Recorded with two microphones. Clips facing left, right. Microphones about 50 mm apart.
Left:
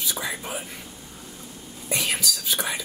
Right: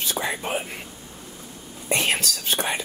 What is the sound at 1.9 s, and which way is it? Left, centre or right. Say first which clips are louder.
Speech: right 3 dB; right.